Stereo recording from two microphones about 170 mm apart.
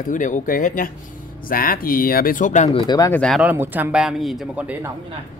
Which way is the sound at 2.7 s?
25° left (ahead or behind).